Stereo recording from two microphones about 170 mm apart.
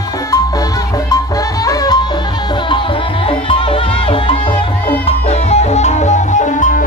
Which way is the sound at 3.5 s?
30° left (ahead or behind).